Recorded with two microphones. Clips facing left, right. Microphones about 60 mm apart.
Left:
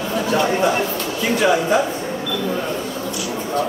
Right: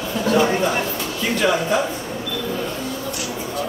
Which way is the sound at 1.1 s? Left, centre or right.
Centre.